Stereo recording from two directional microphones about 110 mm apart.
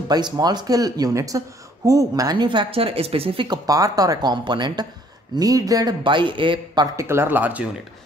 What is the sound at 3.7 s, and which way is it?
A woman's voice, 35° right (ahead or behind).